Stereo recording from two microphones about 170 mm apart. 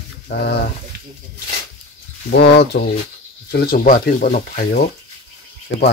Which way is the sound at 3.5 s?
60° left (ahead or behind).